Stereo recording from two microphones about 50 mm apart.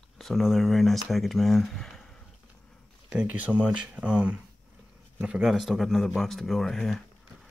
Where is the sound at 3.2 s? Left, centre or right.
Right; by 7.5 s centre.